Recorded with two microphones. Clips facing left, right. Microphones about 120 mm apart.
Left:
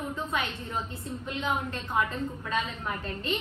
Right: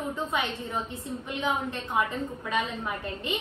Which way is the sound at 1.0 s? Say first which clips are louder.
Right 1 dB; 25° right (ahead or behind).